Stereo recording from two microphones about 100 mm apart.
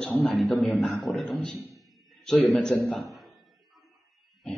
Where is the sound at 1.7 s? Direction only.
5° left (ahead or behind).